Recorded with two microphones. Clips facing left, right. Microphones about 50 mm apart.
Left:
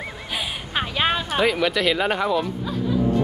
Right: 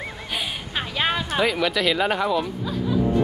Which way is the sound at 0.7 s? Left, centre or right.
Left.